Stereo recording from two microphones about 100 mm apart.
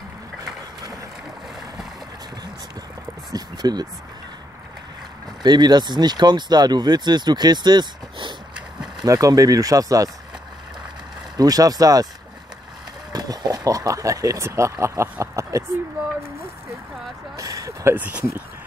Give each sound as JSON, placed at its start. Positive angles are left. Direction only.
{"t": 3.3, "sound": "a sound", "side_deg": -40}
{"t": 5.4, "sound": "speech", "side_deg": -45}
{"t": 8.5, "sound": "a sound", "side_deg": -10}
{"t": 9.0, "sound": "speech", "side_deg": -35}
{"t": 11.3, "sound": "speech", "side_deg": -40}
{"t": 13.1, "sound": "speech", "side_deg": -40}
{"t": 17.4, "sound": "speech", "side_deg": -35}
{"t": 17.9, "sound": "speech", "side_deg": -15}